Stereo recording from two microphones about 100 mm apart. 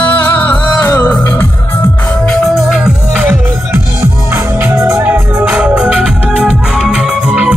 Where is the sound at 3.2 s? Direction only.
25° right (ahead or behind).